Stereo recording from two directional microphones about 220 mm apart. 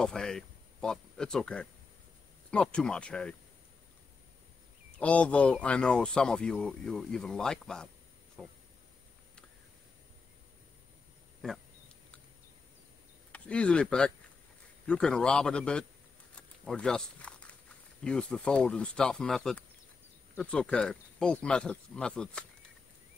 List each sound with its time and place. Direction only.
0.0 s speech: 5° left (ahead or behind)
4.9 s speech: 5° left (ahead or behind)
11.4 s speech: centre (ahead or behind)
13.3 s speech: 5° left (ahead or behind)
16.3 s a sound: 5° left (ahead or behind)
18.0 s speech: 5° left (ahead or behind)